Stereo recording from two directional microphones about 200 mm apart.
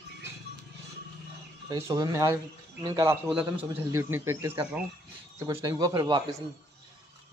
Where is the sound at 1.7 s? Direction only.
15° right (ahead or behind).